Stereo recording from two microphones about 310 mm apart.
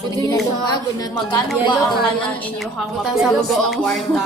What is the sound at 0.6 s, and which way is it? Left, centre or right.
Speech, centre.